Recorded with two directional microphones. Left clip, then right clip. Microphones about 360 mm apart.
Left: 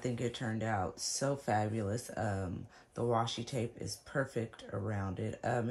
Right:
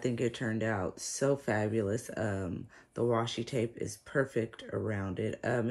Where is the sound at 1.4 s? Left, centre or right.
Centre.